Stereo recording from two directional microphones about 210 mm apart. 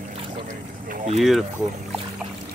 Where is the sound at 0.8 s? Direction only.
35° right (ahead or behind).